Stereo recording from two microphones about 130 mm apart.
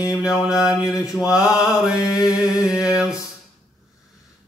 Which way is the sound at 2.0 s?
25° left (ahead or behind).